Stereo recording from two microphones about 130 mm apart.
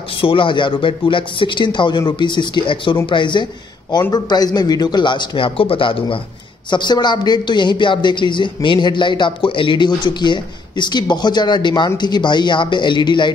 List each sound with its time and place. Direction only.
0.2 s a man's voice: 40° left (ahead or behind)